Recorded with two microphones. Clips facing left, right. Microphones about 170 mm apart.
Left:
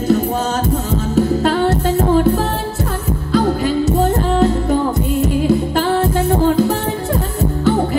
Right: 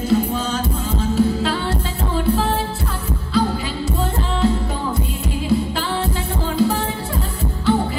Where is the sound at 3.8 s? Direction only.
45° left (ahead or behind).